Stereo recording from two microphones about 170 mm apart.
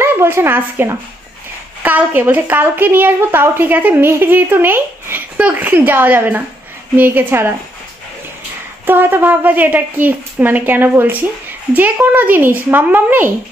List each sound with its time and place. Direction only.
0.0 s a woman's voice: 15° right (ahead or behind)
8.8 s a woman's voice: 10° right (ahead or behind)